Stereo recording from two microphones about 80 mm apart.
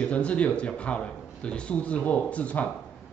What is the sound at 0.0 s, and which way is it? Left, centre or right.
A man's voice, centre.